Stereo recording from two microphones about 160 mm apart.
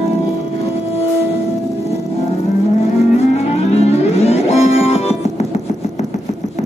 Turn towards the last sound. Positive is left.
turn(degrees=40)  # may be behind; listen again after turning